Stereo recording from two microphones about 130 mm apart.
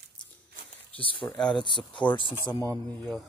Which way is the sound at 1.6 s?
40° left (ahead or behind).